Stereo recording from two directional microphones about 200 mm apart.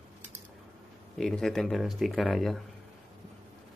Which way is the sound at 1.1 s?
Centre (ahead or behind).